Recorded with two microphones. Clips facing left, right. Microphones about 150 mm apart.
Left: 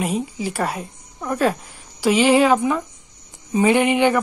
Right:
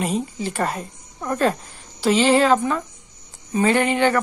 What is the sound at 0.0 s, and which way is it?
Speech, 10° left (ahead or behind).